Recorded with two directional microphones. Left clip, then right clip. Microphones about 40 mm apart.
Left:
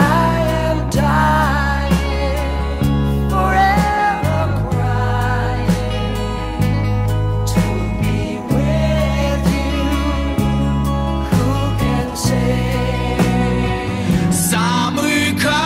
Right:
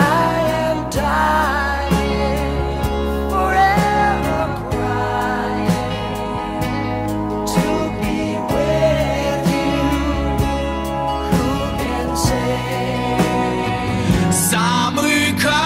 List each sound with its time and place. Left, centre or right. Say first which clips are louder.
0.0 s music: even; left
3.3 s music: left 1 dB; left
8.5 s music: right 4 dB; left
13.2 s music: even; left
14.0 s music: right 1 dB; centre
14.3 s music: even; centre